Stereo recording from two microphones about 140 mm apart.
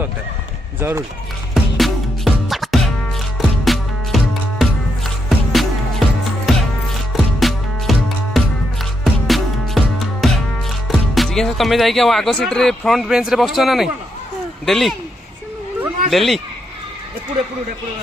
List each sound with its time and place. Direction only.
0.7 s speech: 15° right (ahead or behind)
1.5 s music: centre (ahead or behind)
10.9 s speech: centre (ahead or behind)
16.1 s speech: centre (ahead or behind)